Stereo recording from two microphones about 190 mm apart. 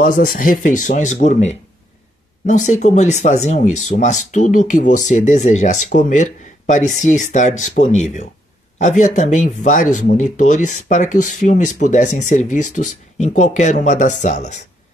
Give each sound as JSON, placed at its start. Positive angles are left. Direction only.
{"t": 0.0, "sound": "speech", "side_deg": 45}